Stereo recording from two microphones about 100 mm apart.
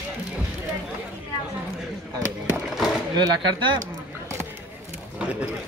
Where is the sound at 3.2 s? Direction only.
45° right (ahead or behind).